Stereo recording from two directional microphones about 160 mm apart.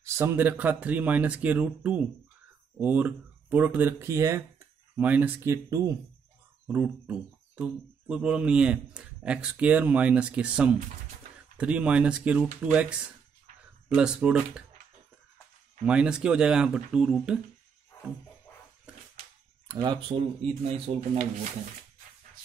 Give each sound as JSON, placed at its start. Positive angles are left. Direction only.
{"t": 0.0, "sound": "speech", "side_deg": -15}
{"t": 13.8, "sound": "speech", "side_deg": -5}
{"t": 15.8, "sound": "speech", "side_deg": -5}
{"t": 19.7, "sound": "speech", "side_deg": -25}